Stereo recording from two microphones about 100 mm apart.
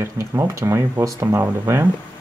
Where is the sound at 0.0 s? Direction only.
30° right (ahead or behind).